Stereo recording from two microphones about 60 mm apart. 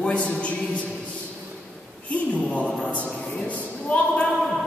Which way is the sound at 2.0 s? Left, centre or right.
Left.